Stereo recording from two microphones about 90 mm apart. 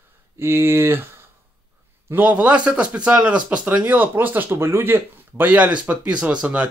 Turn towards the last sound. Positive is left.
turn(degrees=-15)  # may be behind; listen again after turning